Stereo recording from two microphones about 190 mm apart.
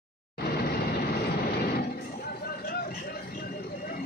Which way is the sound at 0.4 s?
55° left (ahead or behind).